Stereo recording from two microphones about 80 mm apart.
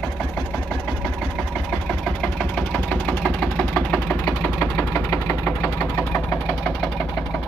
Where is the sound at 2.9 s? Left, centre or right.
Centre.